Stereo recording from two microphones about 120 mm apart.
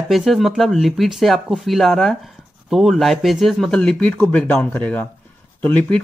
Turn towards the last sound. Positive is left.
turn(degrees=10)  # may be behind; listen again after turning